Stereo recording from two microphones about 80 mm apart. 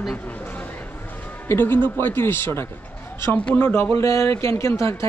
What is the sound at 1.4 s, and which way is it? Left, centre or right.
Speech, left.